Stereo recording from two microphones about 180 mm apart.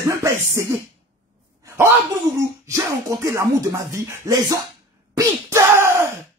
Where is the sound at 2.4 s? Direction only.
15° right (ahead or behind).